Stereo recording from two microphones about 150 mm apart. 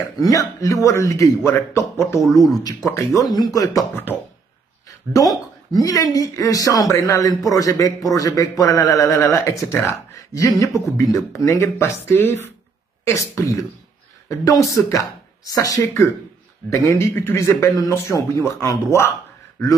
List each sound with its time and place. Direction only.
0.2 s speech: 25° left (ahead or behind)
2.2 s speech: centre (ahead or behind)
2.5 s speech: 25° left (ahead or behind)
5.3 s speech: 25° left (ahead or behind)